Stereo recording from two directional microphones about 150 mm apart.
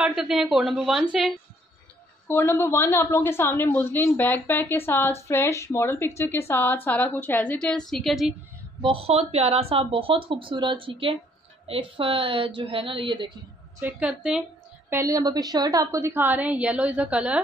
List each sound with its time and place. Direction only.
0.0 s a woman's voice: 5° right (ahead or behind)
2.2 s a woman's voice: 15° left (ahead or behind)
8.8 s speech: 40° right (ahead or behind)
13.7 s a woman's voice: 10° right (ahead or behind)
14.9 s a woman's voice: 20° right (ahead or behind)